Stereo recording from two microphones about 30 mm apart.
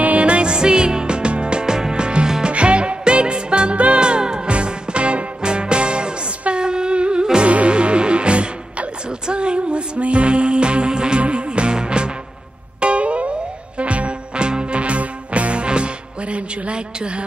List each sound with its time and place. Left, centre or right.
0.2 s music: right
4.5 s music: right
12.8 s music: right